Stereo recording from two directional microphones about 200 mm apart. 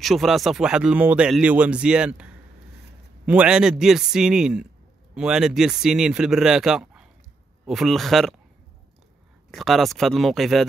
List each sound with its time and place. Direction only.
0.0 s speech: centre (ahead or behind)
9.5 s speech: centre (ahead or behind)